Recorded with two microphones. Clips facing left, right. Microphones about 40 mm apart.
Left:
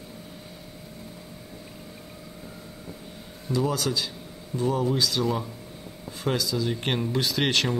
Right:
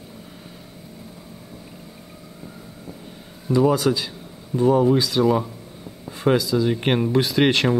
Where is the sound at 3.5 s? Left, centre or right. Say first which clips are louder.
Right 8 dB; centre.